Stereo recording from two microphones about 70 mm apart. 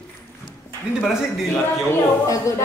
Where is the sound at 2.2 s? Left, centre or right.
Left.